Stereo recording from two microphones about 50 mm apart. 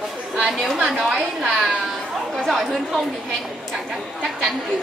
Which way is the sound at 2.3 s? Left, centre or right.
Centre.